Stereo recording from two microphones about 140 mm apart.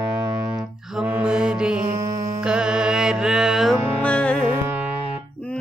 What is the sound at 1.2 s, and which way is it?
Mantra, 5° right (ahead or behind).